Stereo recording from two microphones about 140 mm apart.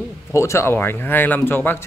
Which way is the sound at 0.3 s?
20° left (ahead or behind).